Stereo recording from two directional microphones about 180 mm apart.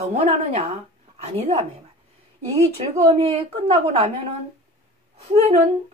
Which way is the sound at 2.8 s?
35° right (ahead or behind).